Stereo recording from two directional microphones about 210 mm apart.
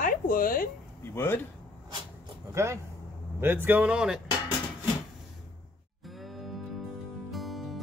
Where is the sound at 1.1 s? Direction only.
10° left (ahead or behind).